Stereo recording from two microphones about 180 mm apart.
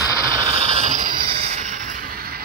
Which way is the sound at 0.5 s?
35° right (ahead or behind).